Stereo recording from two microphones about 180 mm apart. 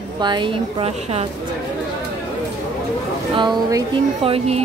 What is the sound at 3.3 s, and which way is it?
Speech, 25° right (ahead or behind).